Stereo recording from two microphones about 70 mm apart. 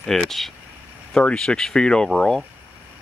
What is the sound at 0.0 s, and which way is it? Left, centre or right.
Speech, centre.